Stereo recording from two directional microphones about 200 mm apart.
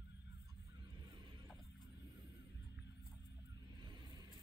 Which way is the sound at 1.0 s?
25° right (ahead or behind).